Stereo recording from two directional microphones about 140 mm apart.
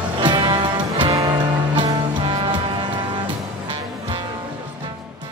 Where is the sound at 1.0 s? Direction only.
25° right (ahead or behind).